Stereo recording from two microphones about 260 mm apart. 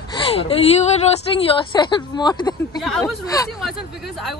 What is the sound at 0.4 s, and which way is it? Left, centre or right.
A woman's voice, left.